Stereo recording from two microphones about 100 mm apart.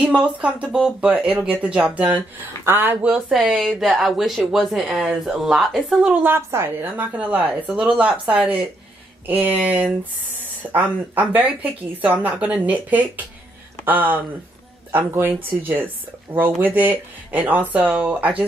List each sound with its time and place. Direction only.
0.0 s a woman's voice: 10° right (ahead or behind)
3.1 s speech: 5° right (ahead or behind)
5.9 s a woman's voice: 15° right (ahead or behind)